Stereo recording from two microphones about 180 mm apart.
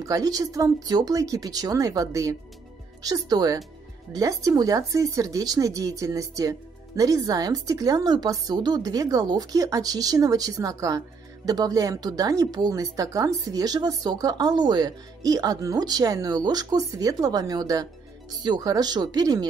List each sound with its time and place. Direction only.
0.0 s a woman's voice: 20° right (ahead or behind)